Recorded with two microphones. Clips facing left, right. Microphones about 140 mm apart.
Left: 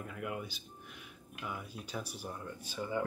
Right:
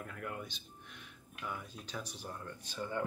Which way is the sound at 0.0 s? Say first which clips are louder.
Left 3 dB; 5° left (ahead or behind).